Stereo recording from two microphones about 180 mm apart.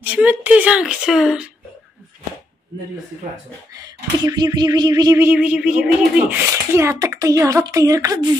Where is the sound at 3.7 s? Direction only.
20° right (ahead or behind).